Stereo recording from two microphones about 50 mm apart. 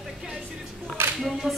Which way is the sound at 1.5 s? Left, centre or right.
Centre.